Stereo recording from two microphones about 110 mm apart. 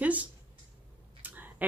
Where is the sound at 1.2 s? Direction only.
15° right (ahead or behind).